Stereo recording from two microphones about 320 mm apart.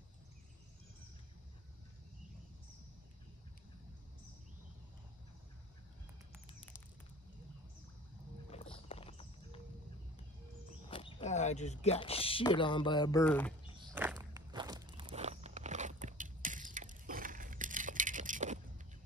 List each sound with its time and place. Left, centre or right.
8.5 s clip-clop: centre
10.9 s speech: centre
13.9 s walk: centre; by 18.6 s right